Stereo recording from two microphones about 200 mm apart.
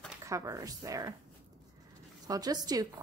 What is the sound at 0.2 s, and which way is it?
Speech, 15° right (ahead or behind).